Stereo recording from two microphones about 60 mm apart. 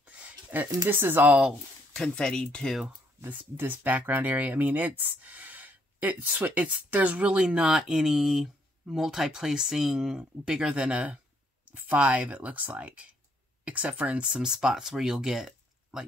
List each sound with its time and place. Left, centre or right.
0.0 s a sound: right
0.8 s speech: right
2.0 s speech: centre
3.2 s speech: right; by 16.1 s centre